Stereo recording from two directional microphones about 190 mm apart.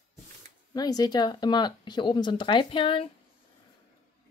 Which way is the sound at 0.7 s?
20° left (ahead or behind).